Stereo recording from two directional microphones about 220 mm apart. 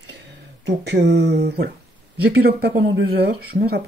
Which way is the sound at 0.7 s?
50° right (ahead or behind).